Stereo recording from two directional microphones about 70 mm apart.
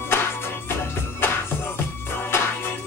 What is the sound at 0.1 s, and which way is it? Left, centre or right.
Music, left.